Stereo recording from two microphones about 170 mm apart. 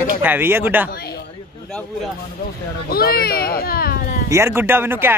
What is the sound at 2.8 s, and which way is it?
Speech, 65° left (ahead or behind).